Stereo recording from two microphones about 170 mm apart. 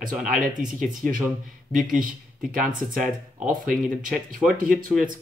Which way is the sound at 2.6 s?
55° right (ahead or behind).